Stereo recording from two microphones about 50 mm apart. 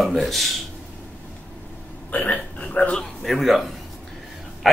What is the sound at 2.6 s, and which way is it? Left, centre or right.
Speech, left.